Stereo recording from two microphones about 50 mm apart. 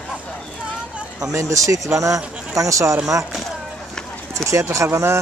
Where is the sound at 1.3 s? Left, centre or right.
Right.